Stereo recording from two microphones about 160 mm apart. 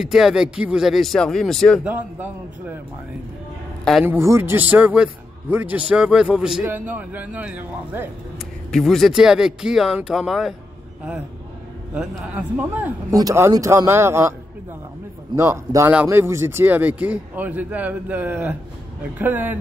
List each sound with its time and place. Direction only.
0.0 s speech: 5° right (ahead or behind)
1.9 s a man's voice: 10° right (ahead or behind)
4.0 s a man's voice: 15° right (ahead or behind)
8.7 s speech: centre (ahead or behind)
11.9 s a man's voice: 5° right (ahead or behind)
15.3 s a man's voice: 15° right (ahead or behind)